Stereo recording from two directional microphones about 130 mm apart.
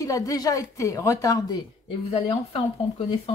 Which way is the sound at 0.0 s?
25° left (ahead or behind).